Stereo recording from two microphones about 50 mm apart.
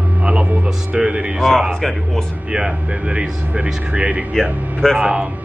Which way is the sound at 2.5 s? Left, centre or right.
Centre.